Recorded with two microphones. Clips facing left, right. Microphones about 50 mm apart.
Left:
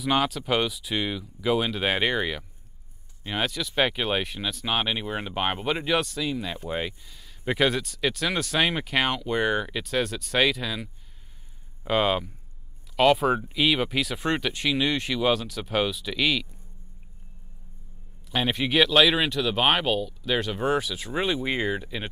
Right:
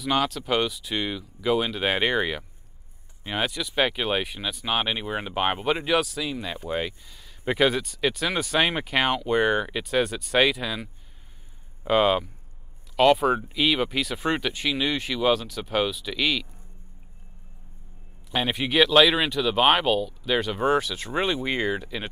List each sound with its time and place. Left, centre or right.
0.0 s speech: centre
18.3 s speech: centre